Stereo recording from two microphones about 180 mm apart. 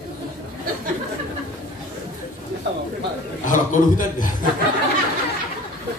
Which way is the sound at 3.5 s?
45° left (ahead or behind).